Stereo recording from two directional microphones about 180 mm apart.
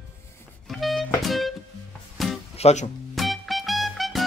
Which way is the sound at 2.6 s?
40° left (ahead or behind).